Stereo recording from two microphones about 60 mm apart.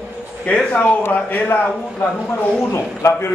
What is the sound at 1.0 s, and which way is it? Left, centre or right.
Speech, left.